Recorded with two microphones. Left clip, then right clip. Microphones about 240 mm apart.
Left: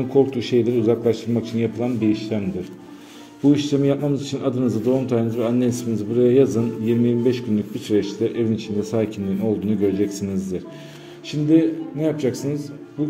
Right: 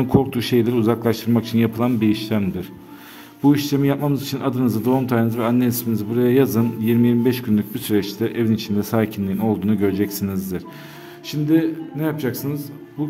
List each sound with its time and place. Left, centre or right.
0.3 s a man's voice: right
3.5 s a man's voice: right